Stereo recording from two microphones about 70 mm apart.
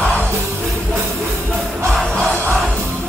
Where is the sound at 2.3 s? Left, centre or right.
Right.